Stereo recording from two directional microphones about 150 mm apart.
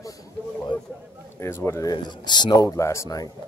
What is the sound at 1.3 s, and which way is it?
Speech, 15° left (ahead or behind).